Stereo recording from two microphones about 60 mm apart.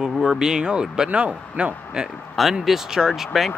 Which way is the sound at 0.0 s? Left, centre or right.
Centre.